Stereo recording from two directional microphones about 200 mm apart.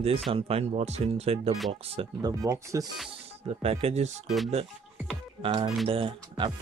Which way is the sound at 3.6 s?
30° right (ahead or behind).